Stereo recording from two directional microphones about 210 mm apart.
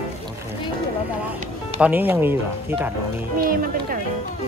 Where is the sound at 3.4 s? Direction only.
40° right (ahead or behind).